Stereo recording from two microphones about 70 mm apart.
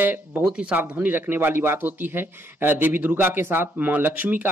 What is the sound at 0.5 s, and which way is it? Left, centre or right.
Speech, centre.